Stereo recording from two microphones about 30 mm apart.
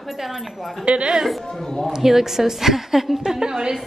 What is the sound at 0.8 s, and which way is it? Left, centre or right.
Speech, right.